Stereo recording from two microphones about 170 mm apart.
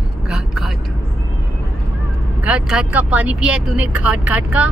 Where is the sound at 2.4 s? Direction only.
5° right (ahead or behind).